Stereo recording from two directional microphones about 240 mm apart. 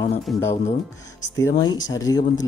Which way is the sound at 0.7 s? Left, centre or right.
Left.